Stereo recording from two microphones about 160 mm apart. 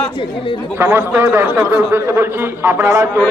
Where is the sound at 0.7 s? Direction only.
15° right (ahead or behind).